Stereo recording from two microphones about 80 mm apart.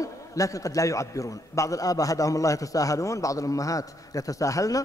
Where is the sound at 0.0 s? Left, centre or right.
Left.